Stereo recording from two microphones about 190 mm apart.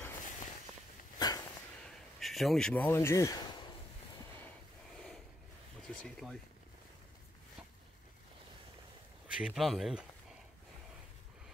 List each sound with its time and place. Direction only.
1.2 s a sound: 20° left (ahead or behind)
2.1 s speech: centre (ahead or behind); by 3.7 s 20° left (ahead or behind)
5.9 s speech: centre (ahead or behind)
9.3 s speech: 5° right (ahead or behind)